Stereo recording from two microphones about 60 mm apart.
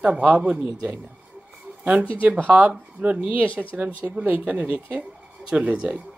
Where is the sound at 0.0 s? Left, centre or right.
Centre.